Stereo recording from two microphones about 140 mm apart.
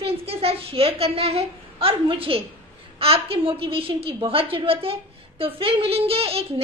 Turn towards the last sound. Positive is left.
turn(degrees=-45)  # may be behind; listen again after turning